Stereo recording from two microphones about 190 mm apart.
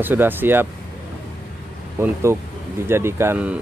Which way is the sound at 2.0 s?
10° right (ahead or behind).